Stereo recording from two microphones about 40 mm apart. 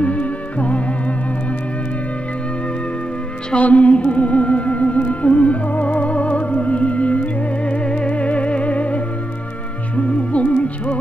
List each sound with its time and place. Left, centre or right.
0.0 s music: left
3.5 s music: left